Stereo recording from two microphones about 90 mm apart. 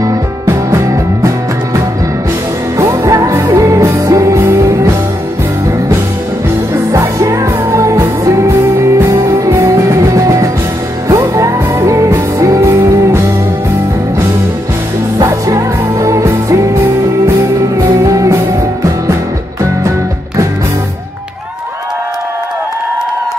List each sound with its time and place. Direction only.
0.0 s music: 35° right (ahead or behind)
2.8 s music: 35° right (ahead or behind)
6.7 s music: 35° right (ahead or behind)
15.2 s music: 35° right (ahead or behind)
17.7 s music: 35° right (ahead or behind)